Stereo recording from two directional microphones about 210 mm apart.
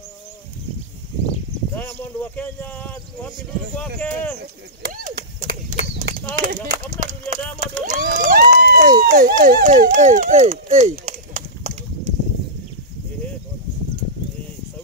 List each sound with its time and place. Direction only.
1.8 s speech: 10° left (ahead or behind)
4.8 s a sound: 45° right (ahead or behind)
6.4 s speech: 35° right (ahead or behind)